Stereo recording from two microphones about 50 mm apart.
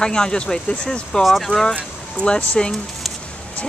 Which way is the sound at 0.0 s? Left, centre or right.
Centre.